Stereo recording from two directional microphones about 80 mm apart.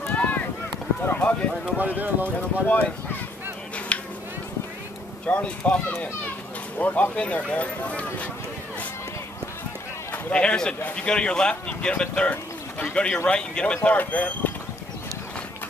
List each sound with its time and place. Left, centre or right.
0.0 s a sound: centre
2.0 s speech: right
2.6 s speech: centre
3.9 s a sound: centre
5.2 s speech: centre
10.1 s a man's voice: centre